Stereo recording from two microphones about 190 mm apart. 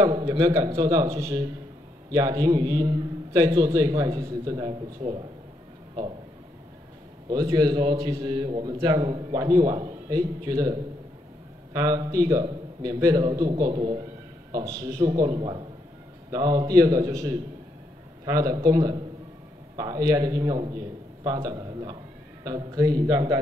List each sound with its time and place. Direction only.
0.0 s a man's voice: 25° right (ahead or behind)
7.2 s a man's voice: 20° right (ahead or behind)